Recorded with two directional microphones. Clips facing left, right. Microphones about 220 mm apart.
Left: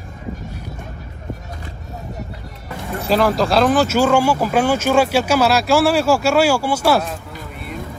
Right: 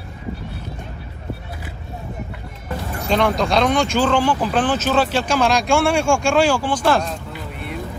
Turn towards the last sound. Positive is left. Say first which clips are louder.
# left 1 dB
turn(degrees=10)  # may be behind; listen again after turning